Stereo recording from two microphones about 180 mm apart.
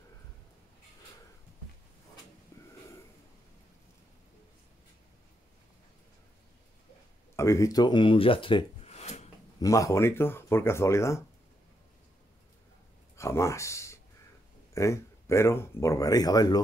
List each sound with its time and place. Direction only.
2.5 s wheeze: 15° left (ahead or behind)
7.3 s speech: 15° left (ahead or behind); by 9.3 s 40° left (ahead or behind)
9.6 s speech: 20° left (ahead or behind)
13.1 s speech: 15° left (ahead or behind)